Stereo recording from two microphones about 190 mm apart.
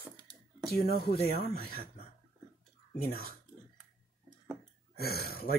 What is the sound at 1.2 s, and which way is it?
Speech, 55° left (ahead or behind).